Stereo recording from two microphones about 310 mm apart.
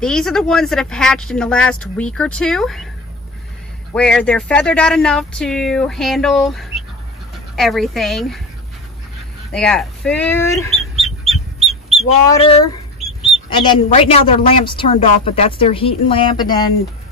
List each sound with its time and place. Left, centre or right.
0.0 s speech: centre
3.9 s speech: centre
9.5 s speech: centre
12.3 s speech: centre
13.7 s speech: centre